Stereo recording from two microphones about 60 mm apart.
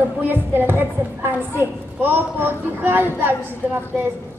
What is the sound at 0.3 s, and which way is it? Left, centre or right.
A woman's voice, right.